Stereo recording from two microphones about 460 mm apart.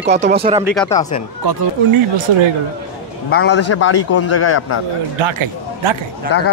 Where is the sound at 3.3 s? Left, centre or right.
Left.